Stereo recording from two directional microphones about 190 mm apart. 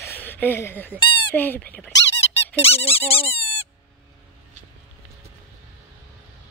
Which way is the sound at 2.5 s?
30° left (ahead or behind).